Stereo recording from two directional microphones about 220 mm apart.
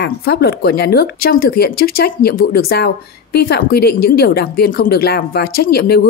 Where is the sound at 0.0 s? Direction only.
45° left (ahead or behind).